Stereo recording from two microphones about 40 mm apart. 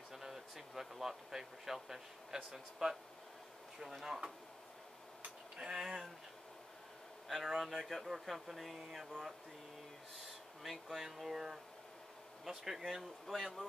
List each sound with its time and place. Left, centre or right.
0.1 s speech: centre
5.6 s speech: centre
7.2 s speech: centre
10.6 s speech: centre
12.8 s speech: centre